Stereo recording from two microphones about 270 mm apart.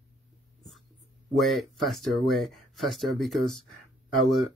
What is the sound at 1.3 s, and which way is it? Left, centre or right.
Speech, centre.